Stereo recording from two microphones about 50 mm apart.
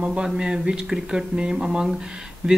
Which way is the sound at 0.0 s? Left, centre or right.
Right.